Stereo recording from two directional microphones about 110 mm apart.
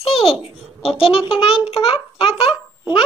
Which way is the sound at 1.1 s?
55° left (ahead or behind).